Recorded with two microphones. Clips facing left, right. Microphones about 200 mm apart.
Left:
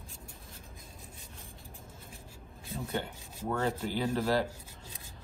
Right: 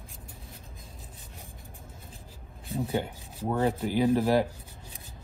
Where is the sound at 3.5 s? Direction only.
15° right (ahead or behind).